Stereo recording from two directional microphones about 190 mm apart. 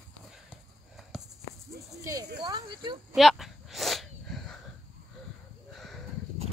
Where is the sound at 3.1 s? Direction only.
Centre (ahead or behind).